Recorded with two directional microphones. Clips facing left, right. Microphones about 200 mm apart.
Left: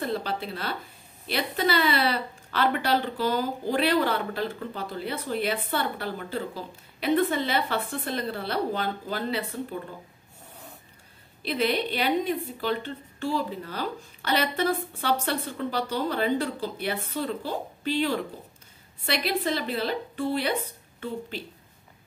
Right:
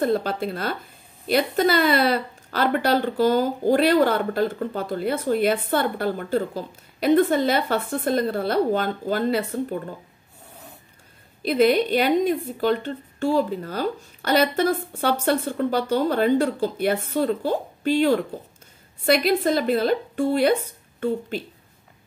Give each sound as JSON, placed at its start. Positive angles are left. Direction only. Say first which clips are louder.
{"t": 0.0, "sound": "a woman's voice", "louder": "right 7 dB", "side_deg": -45}
{"t": 11.4, "sound": "a woman's voice", "louder": "right 8 dB", "side_deg": -45}